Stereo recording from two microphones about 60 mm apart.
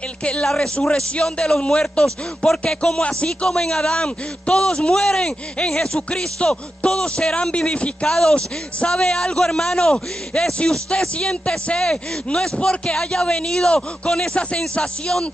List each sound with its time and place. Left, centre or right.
0.2 s a man's voice: centre